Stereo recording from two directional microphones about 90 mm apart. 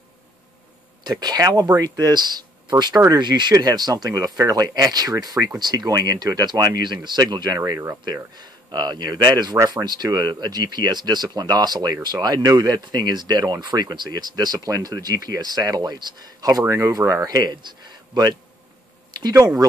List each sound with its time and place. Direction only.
1.0 s speech: 50° right (ahead or behind)
6.8 s speech: 55° right (ahead or behind)
7.5 s speech: 35° right (ahead or behind)
8.0 s speech: 50° right (ahead or behind)
17.4 s speech: 55° right (ahead or behind)